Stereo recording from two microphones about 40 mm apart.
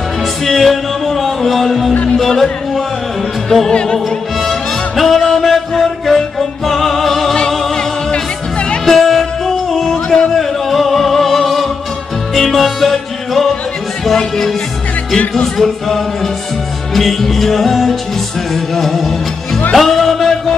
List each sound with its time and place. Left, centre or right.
0.5 s music: centre
3.7 s music: left
4.5 s music: centre
7.3 s music: centre
8.8 s music: centre